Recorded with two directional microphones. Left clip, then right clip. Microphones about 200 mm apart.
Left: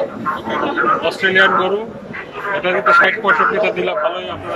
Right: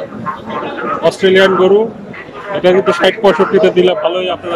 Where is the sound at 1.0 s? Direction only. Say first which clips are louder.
Right 8 dB; 30° right (ahead or behind).